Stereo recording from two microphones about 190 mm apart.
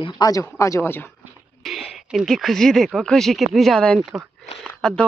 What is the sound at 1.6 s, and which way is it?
Speech, centre (ahead or behind).